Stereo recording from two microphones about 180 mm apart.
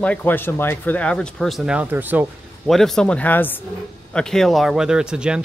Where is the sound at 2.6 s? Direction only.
Centre (ahead or behind).